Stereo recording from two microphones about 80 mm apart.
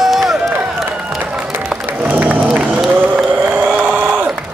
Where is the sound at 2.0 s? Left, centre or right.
Right.